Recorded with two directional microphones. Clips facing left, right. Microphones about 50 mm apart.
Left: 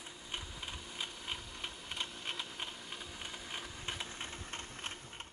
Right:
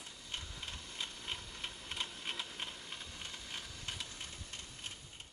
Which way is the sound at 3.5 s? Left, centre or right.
Left.